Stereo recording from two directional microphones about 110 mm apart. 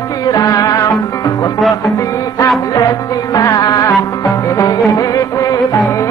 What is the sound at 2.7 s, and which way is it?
Music, 35° left (ahead or behind).